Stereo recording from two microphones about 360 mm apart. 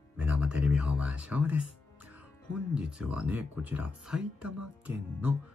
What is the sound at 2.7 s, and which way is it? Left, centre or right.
Speech, centre.